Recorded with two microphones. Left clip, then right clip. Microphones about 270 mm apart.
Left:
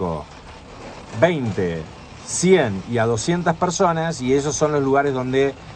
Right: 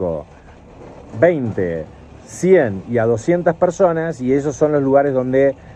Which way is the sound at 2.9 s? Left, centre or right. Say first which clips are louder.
Right 4 dB; centre.